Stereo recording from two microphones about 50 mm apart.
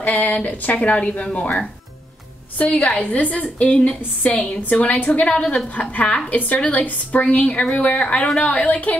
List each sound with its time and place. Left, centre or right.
0.0 s speech: left
2.8 s a woman's voice: left
5.3 s speech: centre